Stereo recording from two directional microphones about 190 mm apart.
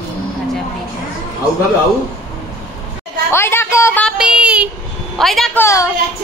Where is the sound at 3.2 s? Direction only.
15° left (ahead or behind).